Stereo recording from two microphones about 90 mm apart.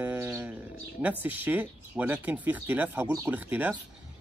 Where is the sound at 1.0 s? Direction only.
20° right (ahead or behind).